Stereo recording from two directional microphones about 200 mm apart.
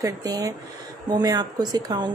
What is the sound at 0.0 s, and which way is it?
A woman's voice, 20° right (ahead or behind).